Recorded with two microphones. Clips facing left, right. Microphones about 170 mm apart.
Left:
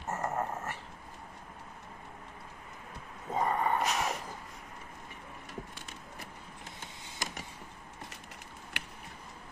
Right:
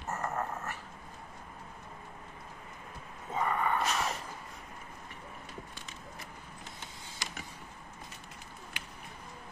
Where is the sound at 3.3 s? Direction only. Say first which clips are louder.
Left 1 dB; 35° left (ahead or behind).